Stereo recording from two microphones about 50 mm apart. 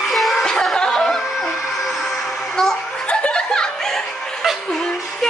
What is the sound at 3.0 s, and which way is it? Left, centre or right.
Chuckle, left.